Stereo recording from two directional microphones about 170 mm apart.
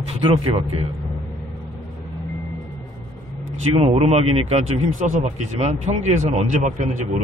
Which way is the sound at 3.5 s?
35° right (ahead or behind).